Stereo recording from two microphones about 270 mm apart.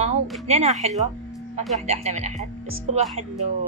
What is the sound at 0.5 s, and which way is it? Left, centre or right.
Speech, right.